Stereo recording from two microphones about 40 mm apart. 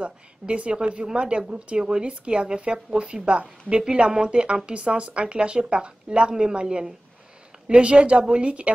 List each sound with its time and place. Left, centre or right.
0.0 s a woman's voice: right